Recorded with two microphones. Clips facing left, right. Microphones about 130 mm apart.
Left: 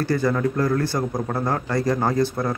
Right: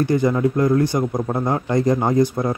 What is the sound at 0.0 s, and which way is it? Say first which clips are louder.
Speech: right 4 dB; 15° right (ahead or behind).